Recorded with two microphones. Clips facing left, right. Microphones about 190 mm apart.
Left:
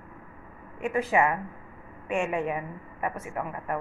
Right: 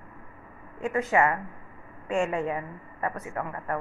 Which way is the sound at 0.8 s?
15° left (ahead or behind).